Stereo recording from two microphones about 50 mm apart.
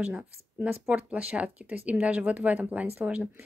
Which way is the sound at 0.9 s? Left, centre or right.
Right.